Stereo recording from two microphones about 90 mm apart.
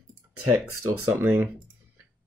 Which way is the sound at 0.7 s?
25° right (ahead or behind).